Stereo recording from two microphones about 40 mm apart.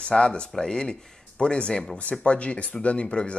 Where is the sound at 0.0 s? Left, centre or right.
Left.